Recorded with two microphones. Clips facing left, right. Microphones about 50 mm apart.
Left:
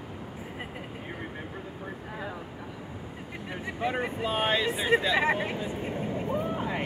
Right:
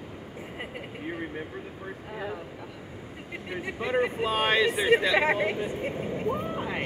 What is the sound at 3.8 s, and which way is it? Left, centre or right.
Speech, right.